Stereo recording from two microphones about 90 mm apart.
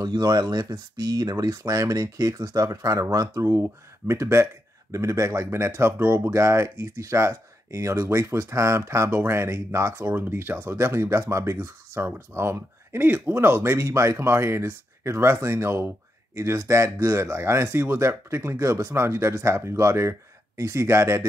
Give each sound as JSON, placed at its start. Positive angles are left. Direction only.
{"t": 0.0, "sound": "speech", "side_deg": -50}